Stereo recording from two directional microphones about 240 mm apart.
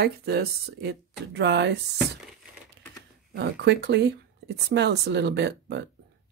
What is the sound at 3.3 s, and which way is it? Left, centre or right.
Speech, right.